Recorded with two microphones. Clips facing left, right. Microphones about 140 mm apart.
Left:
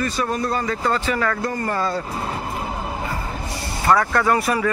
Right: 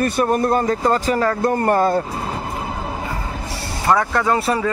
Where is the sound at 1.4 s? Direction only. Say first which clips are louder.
Right 7 dB; 55° right (ahead or behind).